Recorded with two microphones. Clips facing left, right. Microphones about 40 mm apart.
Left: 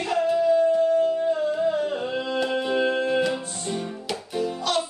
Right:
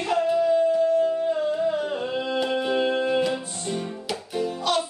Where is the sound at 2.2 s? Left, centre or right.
Centre.